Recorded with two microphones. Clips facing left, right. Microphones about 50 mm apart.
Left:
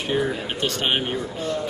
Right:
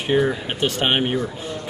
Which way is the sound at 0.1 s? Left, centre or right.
Right.